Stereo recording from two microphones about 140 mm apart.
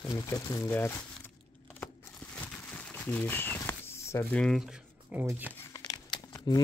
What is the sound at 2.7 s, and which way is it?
Crumpling, 10° left (ahead or behind).